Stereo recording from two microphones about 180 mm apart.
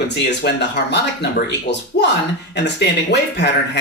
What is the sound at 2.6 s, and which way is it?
Speech, 70° left (ahead or behind).